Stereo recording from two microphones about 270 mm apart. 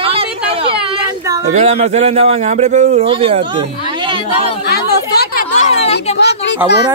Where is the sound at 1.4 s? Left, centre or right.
Right.